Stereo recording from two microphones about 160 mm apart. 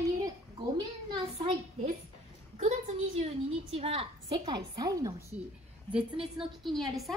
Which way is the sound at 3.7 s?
35° right (ahead or behind).